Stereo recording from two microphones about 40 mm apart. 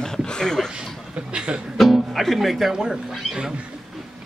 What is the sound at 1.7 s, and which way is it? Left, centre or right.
Speech, centre.